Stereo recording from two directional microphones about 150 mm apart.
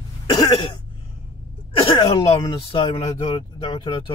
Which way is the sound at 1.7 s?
35° left (ahead or behind).